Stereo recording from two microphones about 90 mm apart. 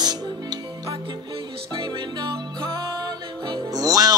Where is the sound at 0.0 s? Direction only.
50° right (ahead or behind).